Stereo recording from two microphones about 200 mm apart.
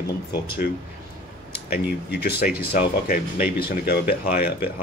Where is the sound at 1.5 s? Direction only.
50° left (ahead or behind).